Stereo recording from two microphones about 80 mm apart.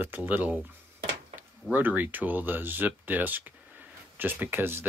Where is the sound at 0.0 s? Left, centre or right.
Right.